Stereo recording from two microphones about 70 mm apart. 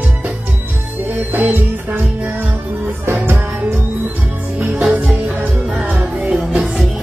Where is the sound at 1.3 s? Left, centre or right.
Right.